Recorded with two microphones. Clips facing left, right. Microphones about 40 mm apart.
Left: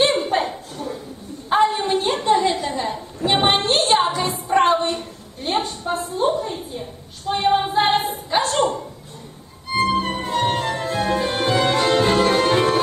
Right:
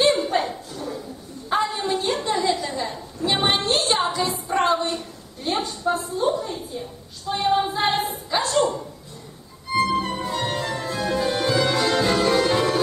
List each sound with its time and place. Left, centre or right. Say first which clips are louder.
0.0 s chuckle: left 1 dB; left
1.5 s a sound: left 5 dB; left
9.7 s music: left 2 dB; left